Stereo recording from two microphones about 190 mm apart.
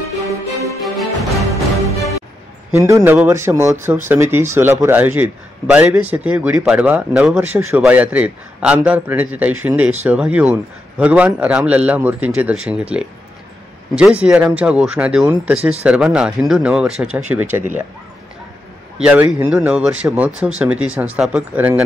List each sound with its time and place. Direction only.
0.8 s music: centre (ahead or behind)
2.7 s a man's voice: 15° right (ahead or behind)
18.9 s a man's voice: 10° right (ahead or behind)